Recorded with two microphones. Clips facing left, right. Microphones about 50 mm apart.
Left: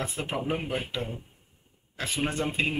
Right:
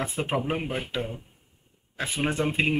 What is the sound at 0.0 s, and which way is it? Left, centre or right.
Speech, right.